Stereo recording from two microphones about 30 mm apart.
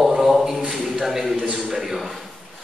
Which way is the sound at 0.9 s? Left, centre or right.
Centre.